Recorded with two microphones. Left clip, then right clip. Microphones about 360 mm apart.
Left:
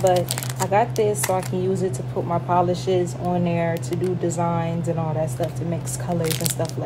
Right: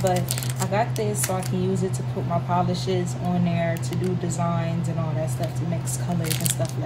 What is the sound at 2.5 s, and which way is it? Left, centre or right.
Speech, centre.